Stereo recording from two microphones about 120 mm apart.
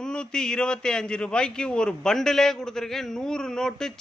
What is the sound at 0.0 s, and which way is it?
A man's voice, 5° left (ahead or behind).